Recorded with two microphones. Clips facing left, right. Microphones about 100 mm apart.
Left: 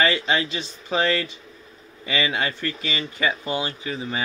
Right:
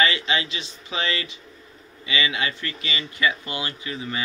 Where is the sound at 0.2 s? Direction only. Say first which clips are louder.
Left 3 dB; 45° left (ahead or behind).